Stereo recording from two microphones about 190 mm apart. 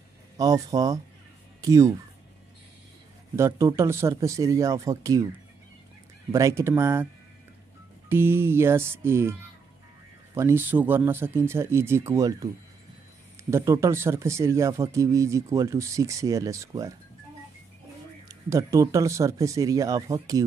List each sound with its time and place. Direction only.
0.4 s speech: 20° right (ahead or behind)
3.3 s speech: 15° right (ahead or behind)
6.3 s speech: 15° right (ahead or behind)
8.1 s speech: 10° right (ahead or behind)
10.3 s speech: 15° right (ahead or behind)
13.5 s speech: 15° right (ahead or behind)
18.3 s speech: 15° right (ahead or behind)